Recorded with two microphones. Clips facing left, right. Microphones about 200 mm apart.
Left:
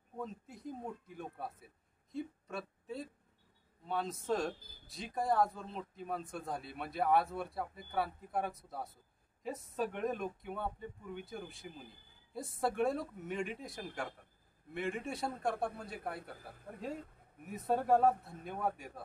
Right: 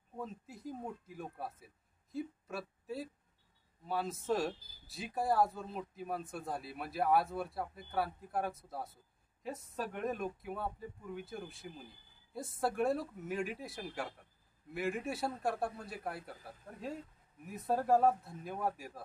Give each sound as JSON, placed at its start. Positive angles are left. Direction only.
{"t": 0.2, "sound": "speech", "side_deg": 0}
{"t": 4.6, "sound": "speech", "side_deg": 55}
{"t": 4.8, "sound": "speech", "side_deg": -5}
{"t": 17.5, "sound": "speech", "side_deg": 0}